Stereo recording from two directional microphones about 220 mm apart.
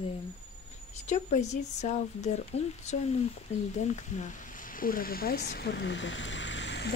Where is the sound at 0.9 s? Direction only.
30° left (ahead or behind).